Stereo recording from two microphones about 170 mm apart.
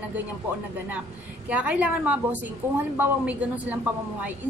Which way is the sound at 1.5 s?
10° right (ahead or behind).